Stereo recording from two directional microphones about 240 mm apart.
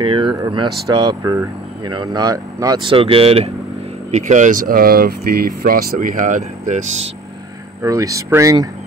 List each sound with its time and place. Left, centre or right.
0.0 s speech: right
7.8 s speech: centre